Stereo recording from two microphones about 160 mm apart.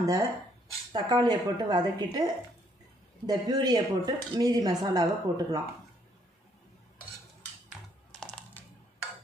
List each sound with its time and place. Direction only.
0.0 s speech: 20° right (ahead or behind)
3.3 s speech: 25° right (ahead or behind)
8.2 s a sound: 5° left (ahead or behind)